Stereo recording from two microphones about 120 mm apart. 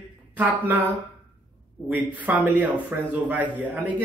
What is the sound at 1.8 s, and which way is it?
Speech, 15° right (ahead or behind).